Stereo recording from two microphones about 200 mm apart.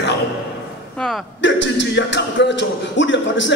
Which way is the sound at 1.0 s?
Centre (ahead or behind).